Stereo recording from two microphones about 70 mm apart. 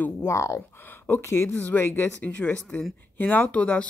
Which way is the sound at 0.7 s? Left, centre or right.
Left.